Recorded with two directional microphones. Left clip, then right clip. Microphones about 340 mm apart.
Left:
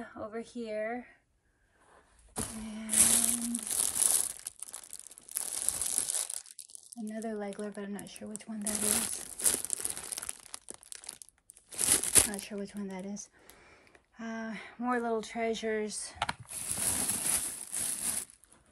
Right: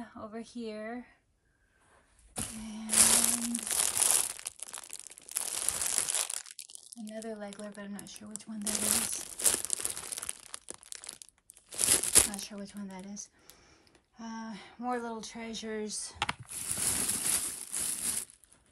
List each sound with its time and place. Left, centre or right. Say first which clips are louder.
0.0 s speech: left 3 dB; centre
2.7 s crumpling: right 3 dB; centre
7.4 s speech: left 4 dB; centre
8.0 s speech: left 3 dB; right
8.4 s crumpling: right 2 dB; centre
11.7 s a sound: right 1 dB; centre
12.7 s speech: left 3 dB; centre
16.3 s a sound: right 1 dB; centre